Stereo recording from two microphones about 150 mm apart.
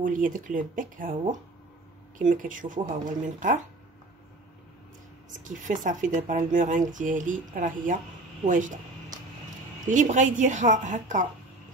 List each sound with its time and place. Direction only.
0.0 s speech: 65° right (ahead or behind)
5.4 s speech: 60° right (ahead or behind)
8.5 s a sound: 60° right (ahead or behind)
9.8 s speech: 55° right (ahead or behind)